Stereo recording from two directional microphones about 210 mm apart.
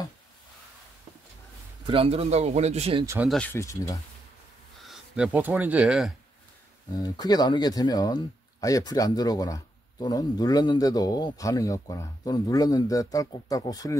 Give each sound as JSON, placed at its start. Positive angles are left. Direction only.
{"t": 1.9, "sound": "speech", "side_deg": -25}
{"t": 3.3, "sound": "speech", "side_deg": 5}
{"t": 4.8, "sound": "speech", "side_deg": -5}
{"t": 6.9, "sound": "speech", "side_deg": 15}